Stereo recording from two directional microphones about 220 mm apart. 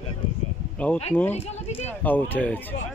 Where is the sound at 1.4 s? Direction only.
30° left (ahead or behind).